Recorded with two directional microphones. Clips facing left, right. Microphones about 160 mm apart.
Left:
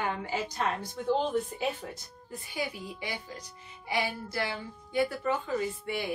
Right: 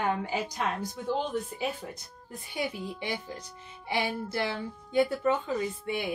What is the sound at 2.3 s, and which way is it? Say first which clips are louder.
A woman's voice: right 2 dB; 25° right (ahead or behind).